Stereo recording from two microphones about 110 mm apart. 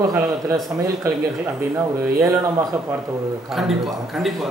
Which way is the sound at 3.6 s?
Centre (ahead or behind).